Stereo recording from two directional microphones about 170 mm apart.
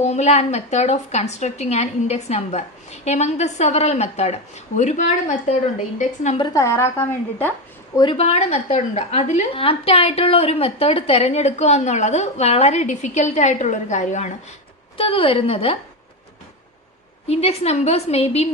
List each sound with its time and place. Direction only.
0.0 s a woman's voice: 40° left (ahead or behind)
6.3 s a woman's voice: 20° left (ahead or behind)
8.0 s a woman's voice: 35° left (ahead or behind)
15.0 s a woman's voice: 30° left (ahead or behind)
17.3 s a woman's voice: 35° left (ahead or behind)